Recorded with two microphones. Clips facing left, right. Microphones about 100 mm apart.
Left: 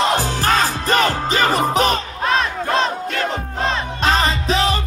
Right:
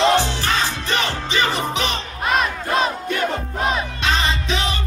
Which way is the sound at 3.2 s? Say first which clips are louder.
Right 1 dB; 10° right (ahead or behind).